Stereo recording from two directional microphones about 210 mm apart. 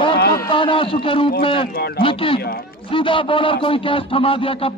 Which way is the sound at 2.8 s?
25° left (ahead or behind).